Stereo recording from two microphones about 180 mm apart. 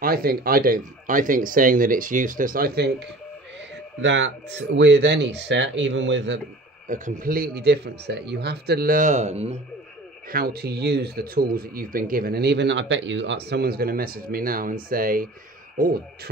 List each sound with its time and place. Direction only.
0.0 s speech: 55° right (ahead or behind)
4.0 s speech: 85° right
6.9 s speech: 50° right (ahead or behind)
10.3 s speech: 60° right (ahead or behind)